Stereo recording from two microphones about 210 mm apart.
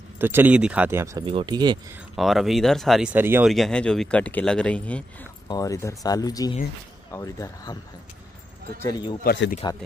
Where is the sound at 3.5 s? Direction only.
5° left (ahead or behind).